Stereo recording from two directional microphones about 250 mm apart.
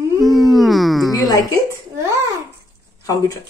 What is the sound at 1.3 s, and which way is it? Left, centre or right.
Speech, centre.